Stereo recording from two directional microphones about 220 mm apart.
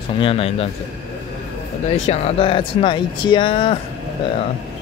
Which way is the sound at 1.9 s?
30° left (ahead or behind).